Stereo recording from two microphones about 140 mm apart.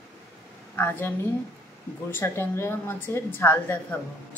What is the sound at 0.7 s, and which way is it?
A woman's voice, 15° left (ahead or behind).